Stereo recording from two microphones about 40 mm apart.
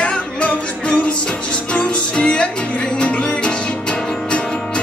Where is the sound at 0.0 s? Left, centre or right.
Left.